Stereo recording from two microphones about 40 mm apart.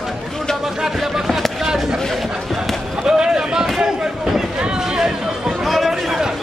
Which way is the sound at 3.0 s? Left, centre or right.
Centre.